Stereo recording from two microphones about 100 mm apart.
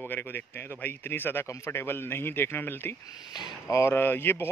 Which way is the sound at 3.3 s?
45° left (ahead or behind).